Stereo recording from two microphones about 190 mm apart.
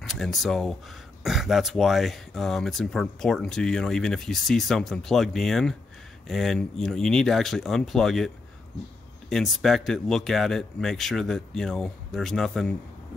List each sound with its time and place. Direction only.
0.0 s speech: centre (ahead or behind)
9.3 s speech: centre (ahead or behind)